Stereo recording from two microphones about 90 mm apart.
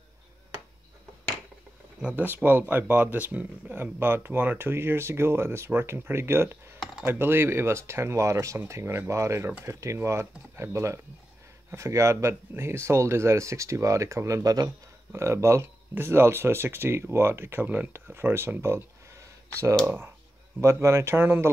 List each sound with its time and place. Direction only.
2.0 s speech: 10° right (ahead or behind); by 14.7 s 45° right (ahead or behind)
15.1 s speech: 30° right (ahead or behind)
20.6 s speech: 30° right (ahead or behind)